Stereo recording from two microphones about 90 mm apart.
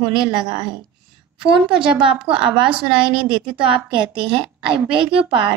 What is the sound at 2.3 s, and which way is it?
A woman's voice, 10° right (ahead or behind).